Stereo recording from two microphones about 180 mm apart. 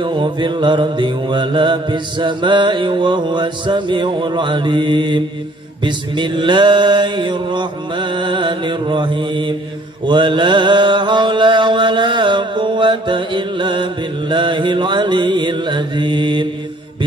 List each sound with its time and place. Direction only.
0.0 s mantra: 25° right (ahead or behind)